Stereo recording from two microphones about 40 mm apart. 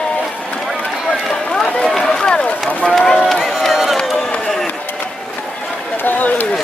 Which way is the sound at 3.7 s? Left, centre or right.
Centre.